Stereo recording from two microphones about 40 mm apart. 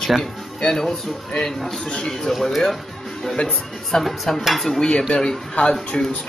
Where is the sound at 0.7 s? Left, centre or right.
Centre.